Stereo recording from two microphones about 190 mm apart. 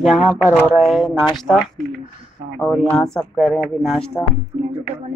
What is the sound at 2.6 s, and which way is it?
A woman's voice, centre (ahead or behind).